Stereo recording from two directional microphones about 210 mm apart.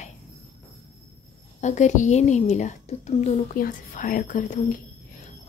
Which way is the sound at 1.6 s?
35° left (ahead or behind).